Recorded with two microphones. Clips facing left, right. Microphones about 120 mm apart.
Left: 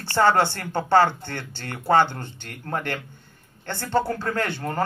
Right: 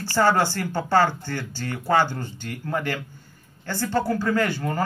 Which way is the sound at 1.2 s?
60° left (ahead or behind).